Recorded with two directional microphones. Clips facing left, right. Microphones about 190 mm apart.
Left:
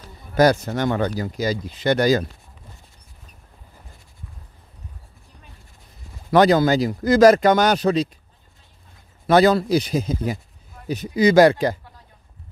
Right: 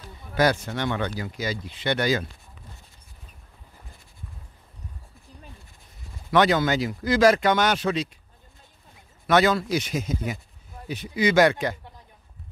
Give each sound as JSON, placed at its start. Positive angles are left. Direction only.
{"t": 0.3, "sound": "speech", "side_deg": 40}
{"t": 6.3, "sound": "speech", "side_deg": 35}
{"t": 9.3, "sound": "speech", "side_deg": 35}